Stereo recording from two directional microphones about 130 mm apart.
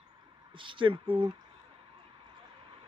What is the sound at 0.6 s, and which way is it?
Speech, 40° right (ahead or behind).